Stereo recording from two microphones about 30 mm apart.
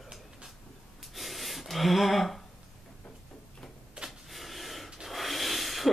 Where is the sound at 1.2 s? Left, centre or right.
Centre.